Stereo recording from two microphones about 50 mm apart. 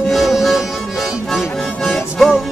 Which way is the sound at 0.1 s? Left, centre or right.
Centre.